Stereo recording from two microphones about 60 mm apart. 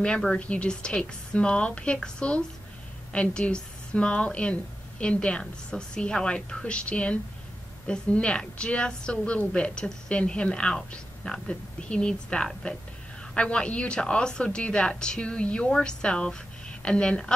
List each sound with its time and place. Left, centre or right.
0.3 s a woman's voice: centre